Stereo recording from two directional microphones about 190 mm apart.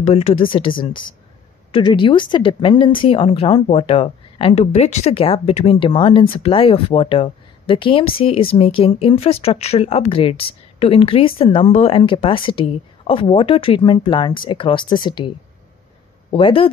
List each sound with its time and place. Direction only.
0.0 s speech: 35° left (ahead or behind)